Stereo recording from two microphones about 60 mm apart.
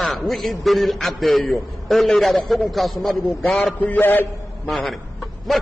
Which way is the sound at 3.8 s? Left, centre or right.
Left.